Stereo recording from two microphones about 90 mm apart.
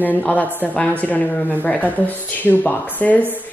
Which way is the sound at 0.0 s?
20° left (ahead or behind).